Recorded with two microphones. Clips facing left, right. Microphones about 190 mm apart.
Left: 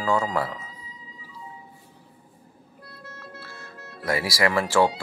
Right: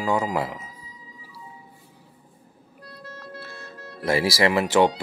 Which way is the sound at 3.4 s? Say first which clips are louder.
Right 3 dB; 20° right (ahead or behind).